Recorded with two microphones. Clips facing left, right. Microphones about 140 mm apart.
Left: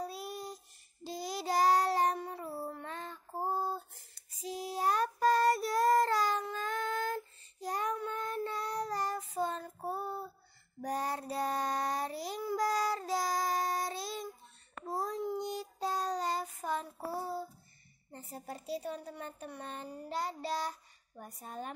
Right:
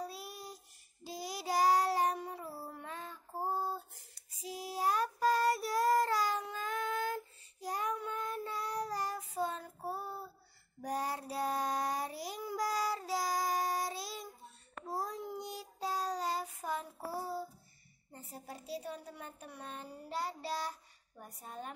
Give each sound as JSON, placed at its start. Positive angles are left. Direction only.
{"t": 0.0, "sound": "child singing", "side_deg": -5}
{"t": 2.4, "sound": "child singing", "side_deg": 20}
{"t": 2.7, "sound": "child singing", "side_deg": -5}
{"t": 3.3, "sound": "female singing", "side_deg": 20}
{"t": 4.5, "sound": "child singing", "side_deg": -5}
{"t": 18.1, "sound": "speech", "side_deg": -5}